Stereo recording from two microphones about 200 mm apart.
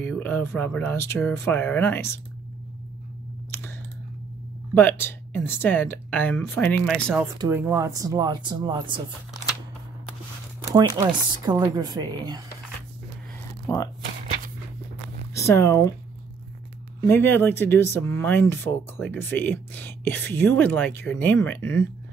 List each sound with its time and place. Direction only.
0.0 s speech: 10° left (ahead or behind)
4.7 s speech: 10° left (ahead or behind)
7.3 s speech: 10° right (ahead or behind)
11.0 s speech: 15° right (ahead or behind)
13.7 s speech: 15° left (ahead or behind)
15.3 s speech: 15° left (ahead or behind)
17.0 s speech: 10° left (ahead or behind)